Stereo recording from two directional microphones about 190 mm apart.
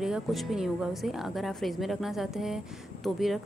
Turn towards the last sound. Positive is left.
turn(degrees=0)  # may be behind; listen again after turning